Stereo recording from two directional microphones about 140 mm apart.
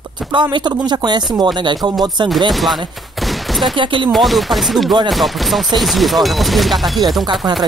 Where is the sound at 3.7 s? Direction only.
35° right (ahead or behind).